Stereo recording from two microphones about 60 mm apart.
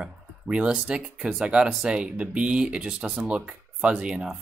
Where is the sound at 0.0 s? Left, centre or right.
Centre.